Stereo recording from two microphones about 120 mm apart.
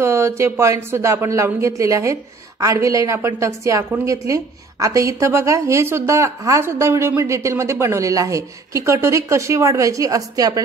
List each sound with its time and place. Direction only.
0.0 s a woman's voice: 20° right (ahead or behind)